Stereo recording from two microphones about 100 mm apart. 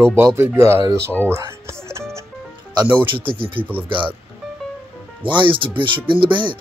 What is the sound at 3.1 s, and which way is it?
Speech, 60° right (ahead or behind).